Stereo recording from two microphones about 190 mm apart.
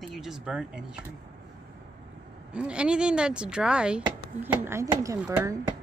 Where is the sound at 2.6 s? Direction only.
5° right (ahead or behind).